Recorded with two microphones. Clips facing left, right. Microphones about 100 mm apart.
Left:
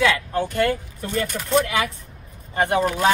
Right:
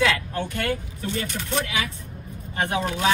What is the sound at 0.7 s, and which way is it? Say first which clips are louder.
Speech: left 2 dB; 45° left (ahead or behind).